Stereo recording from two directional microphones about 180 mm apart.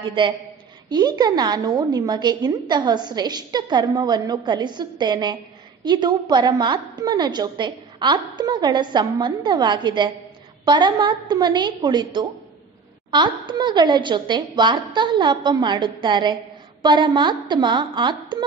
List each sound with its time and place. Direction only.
0.2 s a woman's voice: 25° right (ahead or behind)